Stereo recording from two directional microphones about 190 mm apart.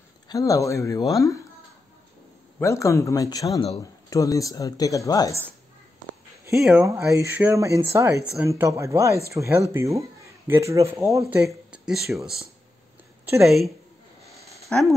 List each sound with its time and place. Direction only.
0.3 s speech: 15° left (ahead or behind)
2.6 s speech: 15° left (ahead or behind)
6.8 s speech: 15° right (ahead or behind)
14.3 s a sound: centre (ahead or behind)